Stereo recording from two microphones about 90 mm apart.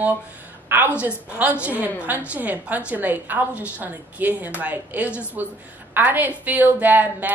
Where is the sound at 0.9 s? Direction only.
15° right (ahead or behind).